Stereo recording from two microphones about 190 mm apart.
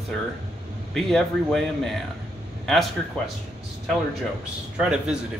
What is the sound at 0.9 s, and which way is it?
Speech, centre (ahead or behind).